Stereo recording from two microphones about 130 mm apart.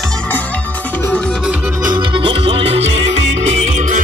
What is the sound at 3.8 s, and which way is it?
Music, 80° right.